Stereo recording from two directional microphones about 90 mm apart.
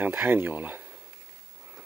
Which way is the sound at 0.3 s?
20° right (ahead or behind).